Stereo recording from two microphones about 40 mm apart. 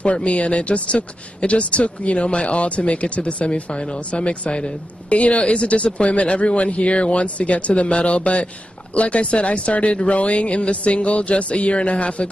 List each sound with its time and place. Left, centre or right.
0.0 s a man's voice: left